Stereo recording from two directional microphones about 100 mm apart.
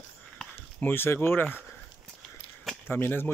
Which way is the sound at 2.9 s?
20° left (ahead or behind).